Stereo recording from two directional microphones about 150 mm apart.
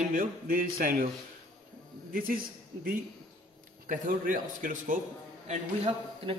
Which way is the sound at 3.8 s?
65° right (ahead or behind).